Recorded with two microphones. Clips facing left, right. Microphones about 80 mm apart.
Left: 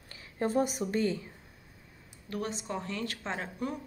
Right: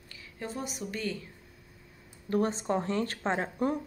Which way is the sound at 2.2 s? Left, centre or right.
Right.